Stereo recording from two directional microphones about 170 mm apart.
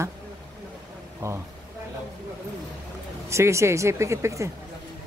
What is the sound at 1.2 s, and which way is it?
Speech, 15° right (ahead or behind).